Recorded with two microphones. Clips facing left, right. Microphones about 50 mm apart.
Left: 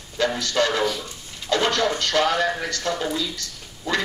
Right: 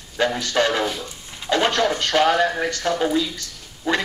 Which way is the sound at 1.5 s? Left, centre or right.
Right.